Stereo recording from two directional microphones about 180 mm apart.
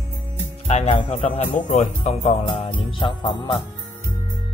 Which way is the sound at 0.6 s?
35° left (ahead or behind).